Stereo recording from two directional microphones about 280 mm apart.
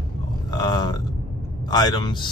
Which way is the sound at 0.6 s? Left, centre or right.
Centre.